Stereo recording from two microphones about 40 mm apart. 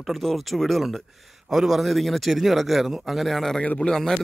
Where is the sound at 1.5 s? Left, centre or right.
Centre.